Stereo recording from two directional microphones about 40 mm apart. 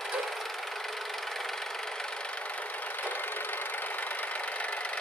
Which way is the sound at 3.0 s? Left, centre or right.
Left.